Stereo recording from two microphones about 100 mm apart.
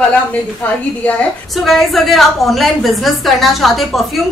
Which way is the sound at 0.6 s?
15° left (ahead or behind).